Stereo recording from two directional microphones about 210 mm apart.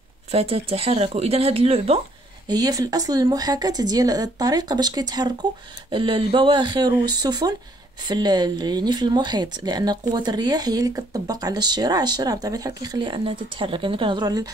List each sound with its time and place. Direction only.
0.3 s speech: 30° right (ahead or behind)